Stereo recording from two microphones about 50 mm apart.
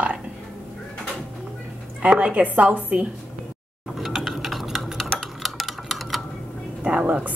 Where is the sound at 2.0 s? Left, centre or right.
Right.